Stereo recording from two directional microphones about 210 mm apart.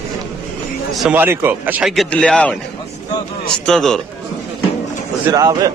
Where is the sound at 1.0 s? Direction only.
10° right (ahead or behind).